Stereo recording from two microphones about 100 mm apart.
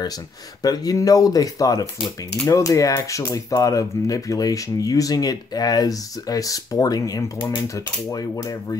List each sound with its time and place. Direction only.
0.6 s speech: 40° left (ahead or behind)